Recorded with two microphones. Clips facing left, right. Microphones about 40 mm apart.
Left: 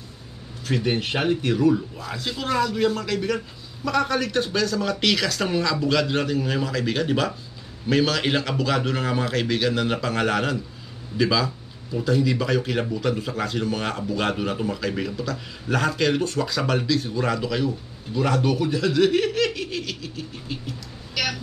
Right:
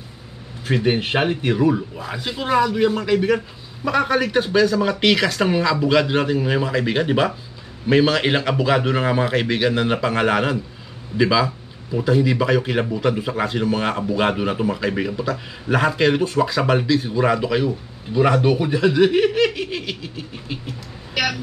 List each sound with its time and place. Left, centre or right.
0.7 s speech: right